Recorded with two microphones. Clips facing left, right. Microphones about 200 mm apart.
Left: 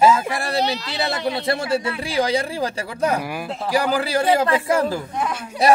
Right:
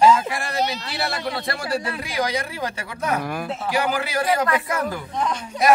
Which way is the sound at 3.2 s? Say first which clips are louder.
Right 1 dB; 5° left (ahead or behind).